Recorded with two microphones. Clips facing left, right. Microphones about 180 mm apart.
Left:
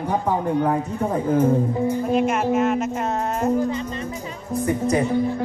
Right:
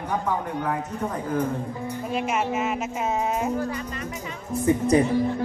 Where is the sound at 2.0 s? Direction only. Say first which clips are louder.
Left 3 dB; centre (ahead or behind).